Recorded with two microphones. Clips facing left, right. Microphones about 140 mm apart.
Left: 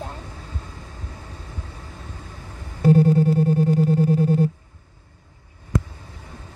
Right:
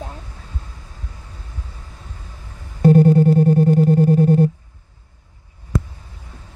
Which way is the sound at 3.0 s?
60° right (ahead or behind).